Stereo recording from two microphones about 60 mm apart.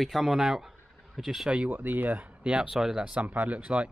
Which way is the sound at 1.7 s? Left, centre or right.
Right.